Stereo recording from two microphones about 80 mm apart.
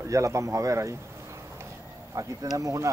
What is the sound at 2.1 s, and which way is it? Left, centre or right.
Speech, right.